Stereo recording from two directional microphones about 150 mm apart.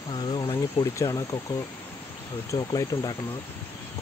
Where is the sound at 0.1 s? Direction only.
30° left (ahead or behind).